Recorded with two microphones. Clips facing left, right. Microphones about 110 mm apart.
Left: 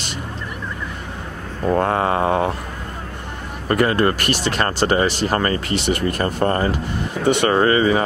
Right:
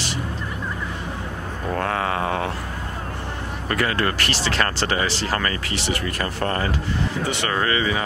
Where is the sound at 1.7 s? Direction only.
30° left (ahead or behind).